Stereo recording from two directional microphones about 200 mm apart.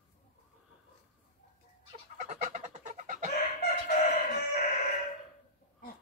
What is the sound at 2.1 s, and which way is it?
Chicken, 40° right (ahead or behind).